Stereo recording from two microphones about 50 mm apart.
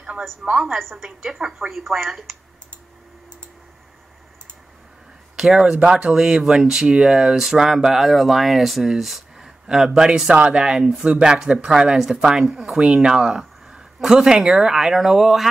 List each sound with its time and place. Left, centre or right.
0.5 s a woman's voice: centre
0.7 s a woman's voice: centre
5.3 s speech: centre